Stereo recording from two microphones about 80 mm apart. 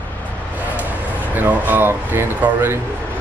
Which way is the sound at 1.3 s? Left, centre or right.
Right.